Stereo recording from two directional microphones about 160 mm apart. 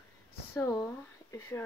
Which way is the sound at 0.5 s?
20° left (ahead or behind).